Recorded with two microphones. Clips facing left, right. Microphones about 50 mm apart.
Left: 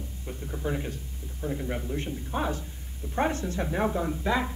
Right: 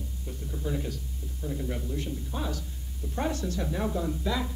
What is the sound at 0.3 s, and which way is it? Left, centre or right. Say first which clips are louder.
Speech: left 2 dB; left.